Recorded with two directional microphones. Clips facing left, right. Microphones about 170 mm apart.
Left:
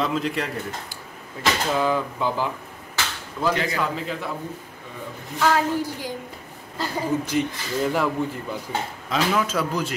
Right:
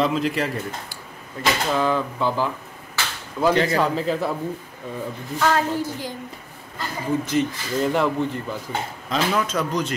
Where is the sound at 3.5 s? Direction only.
35° right (ahead or behind).